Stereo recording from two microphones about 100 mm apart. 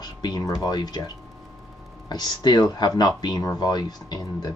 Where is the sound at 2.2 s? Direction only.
45° left (ahead or behind).